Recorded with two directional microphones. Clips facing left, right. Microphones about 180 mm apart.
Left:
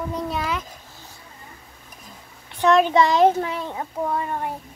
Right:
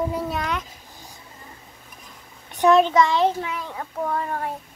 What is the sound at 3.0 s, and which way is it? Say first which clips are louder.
Speech: left 3 dB; 40° left (ahead or behind).